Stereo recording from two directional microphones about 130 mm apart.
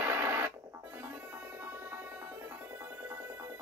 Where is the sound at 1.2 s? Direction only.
20° right (ahead or behind).